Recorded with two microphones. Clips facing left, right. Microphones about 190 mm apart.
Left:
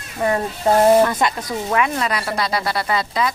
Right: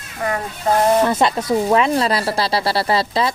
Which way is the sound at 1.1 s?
25° right (ahead or behind).